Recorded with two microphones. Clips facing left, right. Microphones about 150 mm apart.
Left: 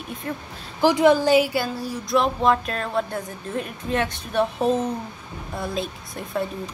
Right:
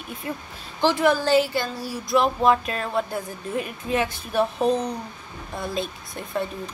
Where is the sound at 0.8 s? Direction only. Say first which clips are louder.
Left 4 dB; 20° left (ahead or behind).